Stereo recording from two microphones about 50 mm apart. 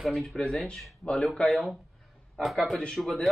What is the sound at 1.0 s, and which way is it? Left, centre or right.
Speech, centre.